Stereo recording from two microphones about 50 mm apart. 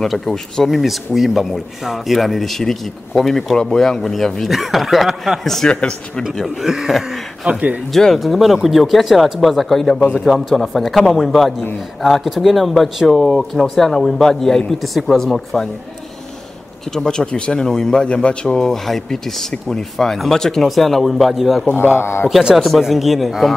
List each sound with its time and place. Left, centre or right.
0.0 s a man's voice: centre
0.7 s speech: centre
5.7 s speech: centre
6.6 s speech: centre
7.9 s speech: centre
16.9 s a man's voice: centre
21.7 s a man's voice: left
22.8 s speech: centre